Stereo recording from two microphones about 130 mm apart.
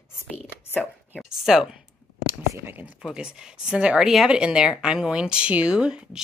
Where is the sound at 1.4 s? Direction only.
5° right (ahead or behind).